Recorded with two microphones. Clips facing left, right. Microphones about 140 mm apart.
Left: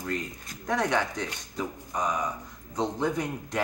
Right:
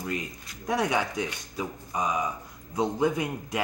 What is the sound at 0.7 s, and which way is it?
Speech, 10° right (ahead or behind).